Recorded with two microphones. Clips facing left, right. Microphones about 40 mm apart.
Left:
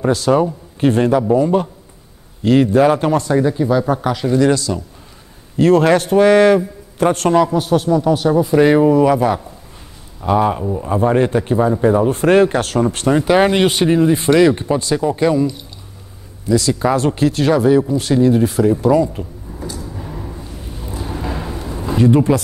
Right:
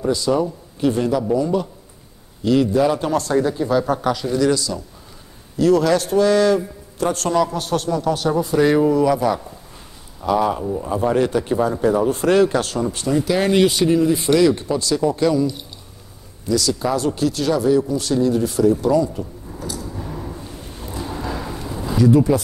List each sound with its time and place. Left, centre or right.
0.0 s speech: left
3.3 s a man's voice: centre
4.2 s speech: left
7.4 s a man's voice: centre
8.5 s speech: left
10.6 s a man's voice: centre
10.9 s speech: left
12.1 s speech: left
13.2 s speech: left
16.5 s speech: left
19.8 s a sound: centre
21.7 s a sound: left
22.0 s speech: left